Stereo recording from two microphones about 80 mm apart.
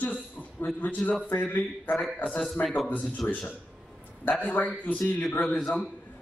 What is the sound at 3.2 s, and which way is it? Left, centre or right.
Speech, centre.